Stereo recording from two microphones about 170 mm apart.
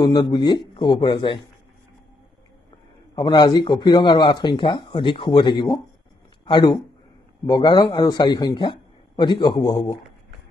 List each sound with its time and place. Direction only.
0.0 s speech: 25° left (ahead or behind)
3.2 s speech: 25° left (ahead or behind)